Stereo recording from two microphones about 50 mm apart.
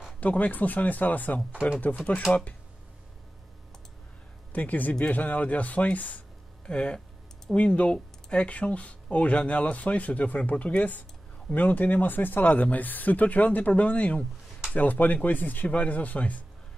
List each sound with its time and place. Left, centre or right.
0.2 s speech: left
4.5 s speech: left
6.6 s speech: left